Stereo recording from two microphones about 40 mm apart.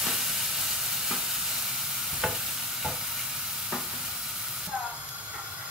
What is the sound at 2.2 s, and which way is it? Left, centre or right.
Stir, centre.